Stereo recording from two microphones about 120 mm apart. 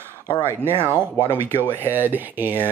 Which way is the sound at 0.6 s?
20° right (ahead or behind).